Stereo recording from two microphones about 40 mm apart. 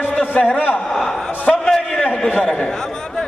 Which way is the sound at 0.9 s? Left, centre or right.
Centre.